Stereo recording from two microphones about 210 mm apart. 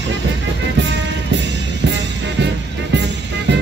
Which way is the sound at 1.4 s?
55° right (ahead or behind).